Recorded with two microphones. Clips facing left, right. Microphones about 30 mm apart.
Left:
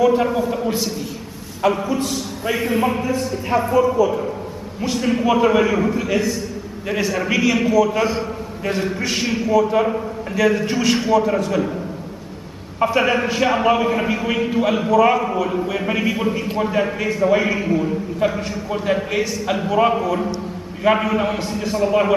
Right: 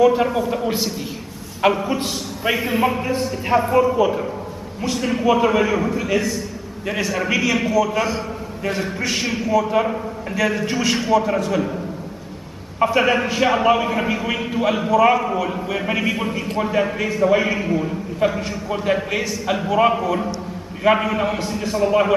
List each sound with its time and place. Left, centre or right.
0.0 s a man's voice: centre
1.9 s a man's voice: right
2.5 s a man's voice: centre
4.0 s a man's voice: right
4.8 s a man's voice: centre
12.7 s a man's voice: centre